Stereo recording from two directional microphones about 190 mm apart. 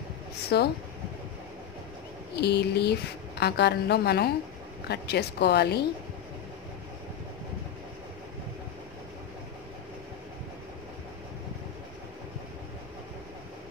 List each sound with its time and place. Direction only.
0.5 s a woman's voice: 60° left (ahead or behind)
2.3 s a woman's voice: 60° left (ahead or behind)